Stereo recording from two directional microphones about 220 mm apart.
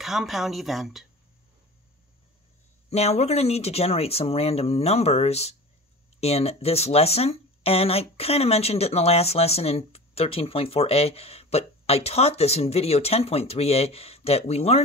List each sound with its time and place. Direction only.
0.0 s speech: centre (ahead or behind)
2.9 s speech: 30° left (ahead or behind)